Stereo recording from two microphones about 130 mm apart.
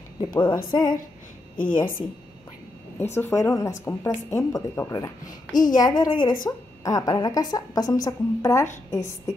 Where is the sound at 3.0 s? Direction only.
20° left (ahead or behind).